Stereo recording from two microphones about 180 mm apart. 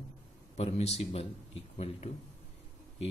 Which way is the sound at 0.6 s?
35° left (ahead or behind).